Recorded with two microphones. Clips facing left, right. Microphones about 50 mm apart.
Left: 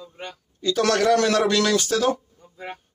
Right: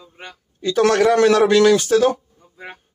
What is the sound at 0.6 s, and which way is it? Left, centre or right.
A man's voice, centre.